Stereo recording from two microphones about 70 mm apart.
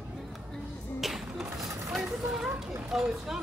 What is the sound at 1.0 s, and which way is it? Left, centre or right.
Music, centre.